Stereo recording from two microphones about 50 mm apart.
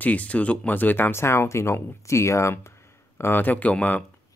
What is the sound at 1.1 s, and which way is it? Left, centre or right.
Speech, left.